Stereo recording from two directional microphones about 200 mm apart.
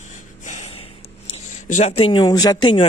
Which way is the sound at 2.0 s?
20° left (ahead or behind).